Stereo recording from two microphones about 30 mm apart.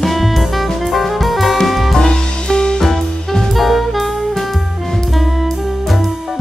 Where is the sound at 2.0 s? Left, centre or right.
Left.